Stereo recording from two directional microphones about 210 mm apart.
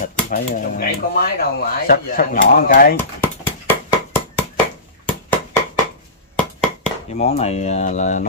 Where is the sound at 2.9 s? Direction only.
10° left (ahead or behind).